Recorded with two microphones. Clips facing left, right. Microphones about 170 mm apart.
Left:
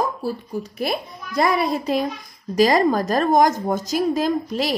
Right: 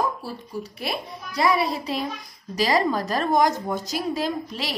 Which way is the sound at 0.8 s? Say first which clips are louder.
Left 7 dB; 45° left (ahead or behind).